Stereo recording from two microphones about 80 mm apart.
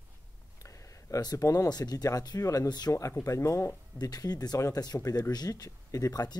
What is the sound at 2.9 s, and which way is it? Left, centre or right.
Speech, left.